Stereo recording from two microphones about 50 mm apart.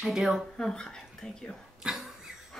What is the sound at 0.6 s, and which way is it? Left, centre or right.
Speech, centre.